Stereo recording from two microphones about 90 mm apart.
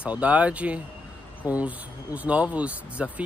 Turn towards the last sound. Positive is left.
turn(degrees=-15)  # may be behind; listen again after turning